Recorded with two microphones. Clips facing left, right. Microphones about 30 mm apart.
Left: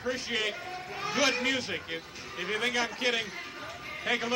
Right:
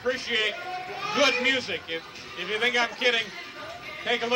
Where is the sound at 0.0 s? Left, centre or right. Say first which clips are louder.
Right 5 dB; centre.